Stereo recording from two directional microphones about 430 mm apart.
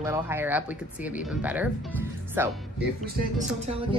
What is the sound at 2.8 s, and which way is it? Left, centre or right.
Music, centre.